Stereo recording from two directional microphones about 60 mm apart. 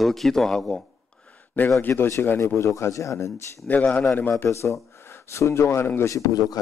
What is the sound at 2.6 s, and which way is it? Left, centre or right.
Speech, left.